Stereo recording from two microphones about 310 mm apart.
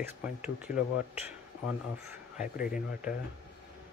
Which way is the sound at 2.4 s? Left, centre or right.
Left.